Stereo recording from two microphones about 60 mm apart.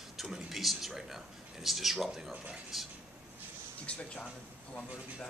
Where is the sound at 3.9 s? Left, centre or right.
Left.